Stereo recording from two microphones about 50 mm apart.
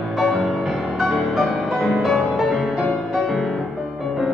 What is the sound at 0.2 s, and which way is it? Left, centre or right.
Music, centre.